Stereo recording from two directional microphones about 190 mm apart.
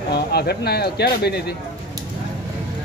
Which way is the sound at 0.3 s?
60° left (ahead or behind).